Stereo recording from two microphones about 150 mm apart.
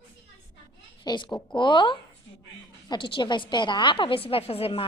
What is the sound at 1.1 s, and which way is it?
A woman's voice, 30° left (ahead or behind).